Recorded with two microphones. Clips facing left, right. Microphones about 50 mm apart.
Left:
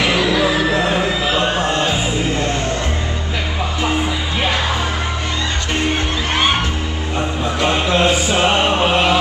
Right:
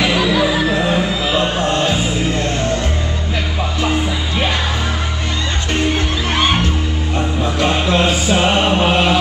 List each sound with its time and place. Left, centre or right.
0.1 s music: centre
1.4 s music: centre
7.6 s mantra: centre